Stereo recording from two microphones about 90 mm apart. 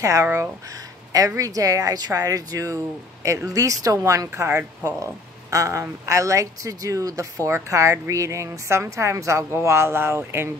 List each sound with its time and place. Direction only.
0.0 s a woman's voice: 35° right (ahead or behind)